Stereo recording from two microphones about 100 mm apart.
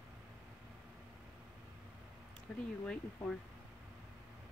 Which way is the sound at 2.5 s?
5° left (ahead or behind).